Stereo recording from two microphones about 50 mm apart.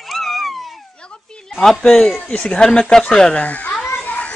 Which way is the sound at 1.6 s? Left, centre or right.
Centre.